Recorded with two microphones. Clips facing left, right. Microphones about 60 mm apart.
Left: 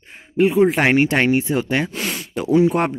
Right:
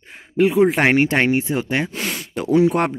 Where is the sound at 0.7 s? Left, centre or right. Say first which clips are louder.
Even; right.